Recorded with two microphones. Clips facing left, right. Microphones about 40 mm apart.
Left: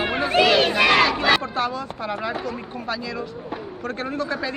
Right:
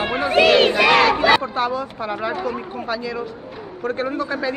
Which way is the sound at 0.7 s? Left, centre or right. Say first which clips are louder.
Right 2 dB; centre.